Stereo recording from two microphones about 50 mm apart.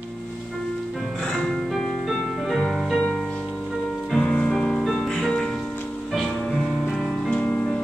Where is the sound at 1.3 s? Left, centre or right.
Centre.